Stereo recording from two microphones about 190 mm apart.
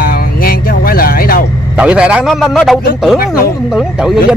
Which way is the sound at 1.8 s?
5° right (ahead or behind).